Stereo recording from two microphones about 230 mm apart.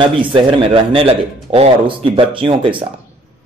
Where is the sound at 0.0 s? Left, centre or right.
Right.